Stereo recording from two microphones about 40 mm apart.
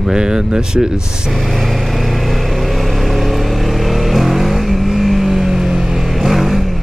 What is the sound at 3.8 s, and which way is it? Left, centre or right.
Vehicle, centre.